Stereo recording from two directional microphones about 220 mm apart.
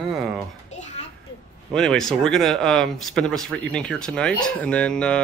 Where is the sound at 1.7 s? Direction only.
Centre (ahead or behind).